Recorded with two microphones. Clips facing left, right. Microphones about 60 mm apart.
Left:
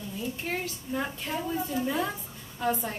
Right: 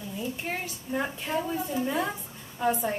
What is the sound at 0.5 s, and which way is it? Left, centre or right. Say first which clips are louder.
A woman's voice: even; centre.